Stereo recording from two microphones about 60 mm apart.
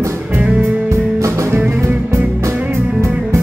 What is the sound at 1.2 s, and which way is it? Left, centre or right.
Music, right.